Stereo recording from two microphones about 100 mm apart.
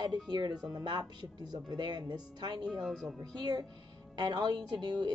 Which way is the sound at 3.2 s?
45° right (ahead or behind).